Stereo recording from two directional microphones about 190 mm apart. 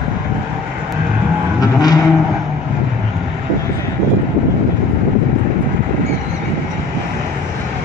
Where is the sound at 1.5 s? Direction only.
20° left (ahead or behind).